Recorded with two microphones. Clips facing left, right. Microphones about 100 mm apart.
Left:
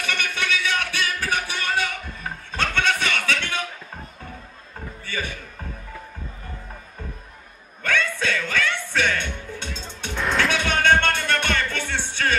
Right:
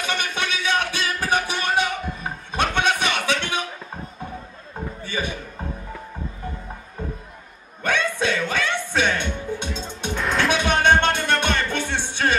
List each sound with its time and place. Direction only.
0.0 s music: 20° right (ahead or behind)
5.0 s music: 20° right (ahead or behind)
7.8 s music: 20° right (ahead or behind)
10.1 s music: centre (ahead or behind)
10.5 s music: 15° right (ahead or behind)